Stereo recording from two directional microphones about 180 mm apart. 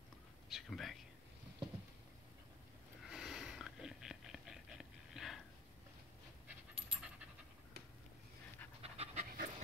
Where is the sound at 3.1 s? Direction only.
Centre (ahead or behind).